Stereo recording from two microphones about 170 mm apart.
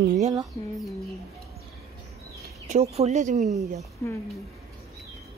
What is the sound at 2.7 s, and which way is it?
Speech, 40° right (ahead or behind).